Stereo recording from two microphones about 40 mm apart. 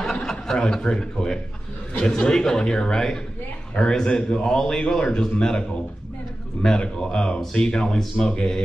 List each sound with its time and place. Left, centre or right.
0.0 s a man's voice: centre